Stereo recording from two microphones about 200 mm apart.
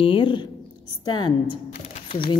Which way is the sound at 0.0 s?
25° left (ahead or behind).